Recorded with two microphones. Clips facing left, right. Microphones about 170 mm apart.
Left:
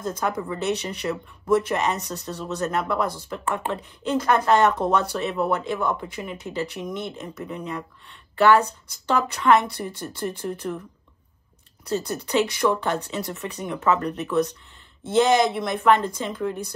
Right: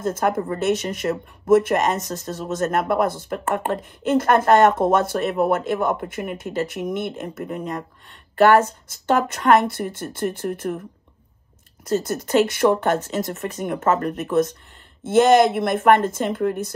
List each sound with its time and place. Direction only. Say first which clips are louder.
0.0 s speech: right 5 dB; 50° right (ahead or behind)
11.9 s speech: right 4 dB; 50° right (ahead or behind)